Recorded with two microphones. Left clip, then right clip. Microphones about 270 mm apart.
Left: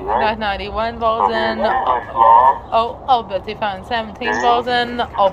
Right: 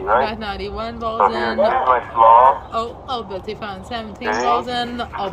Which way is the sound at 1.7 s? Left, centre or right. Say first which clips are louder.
Even; right.